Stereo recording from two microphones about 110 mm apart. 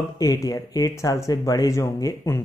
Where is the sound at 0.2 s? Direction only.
35° left (ahead or behind).